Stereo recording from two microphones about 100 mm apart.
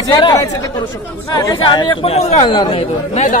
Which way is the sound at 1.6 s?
45° left (ahead or behind).